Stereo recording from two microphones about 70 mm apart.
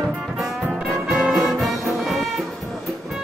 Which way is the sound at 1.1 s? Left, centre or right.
Centre.